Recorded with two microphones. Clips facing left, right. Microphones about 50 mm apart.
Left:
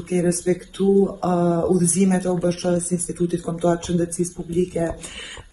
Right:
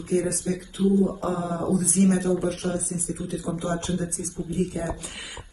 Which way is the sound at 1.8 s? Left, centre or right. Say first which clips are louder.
Left 2 dB; left.